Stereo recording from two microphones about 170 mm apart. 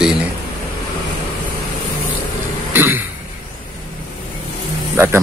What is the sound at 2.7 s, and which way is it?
Throat clearing, 15° right (ahead or behind).